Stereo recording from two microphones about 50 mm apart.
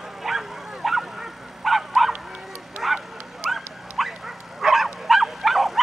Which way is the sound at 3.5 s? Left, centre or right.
Centre.